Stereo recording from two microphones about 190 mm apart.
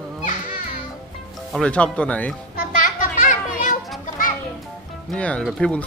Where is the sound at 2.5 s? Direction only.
45° left (ahead or behind).